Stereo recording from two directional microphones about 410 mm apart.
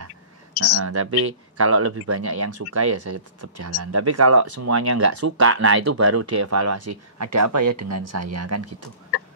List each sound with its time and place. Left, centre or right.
0.8 s speech: right